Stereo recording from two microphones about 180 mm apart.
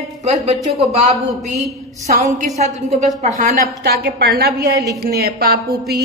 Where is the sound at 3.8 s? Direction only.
65° right (ahead or behind).